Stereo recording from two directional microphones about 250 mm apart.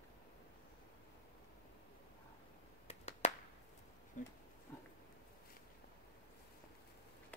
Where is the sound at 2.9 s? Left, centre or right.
Left.